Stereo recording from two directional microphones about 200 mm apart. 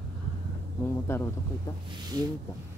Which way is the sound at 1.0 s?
10° left (ahead or behind).